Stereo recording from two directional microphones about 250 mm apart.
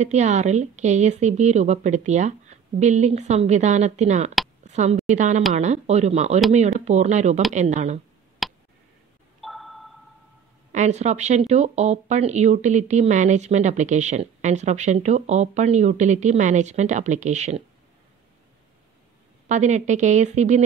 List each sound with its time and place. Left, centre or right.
0.0 s speech: right
4.6 s a sound: right
5.0 s a woman's voice: right
8.4 s a sound: centre
10.7 s speech: right
19.4 s speech: right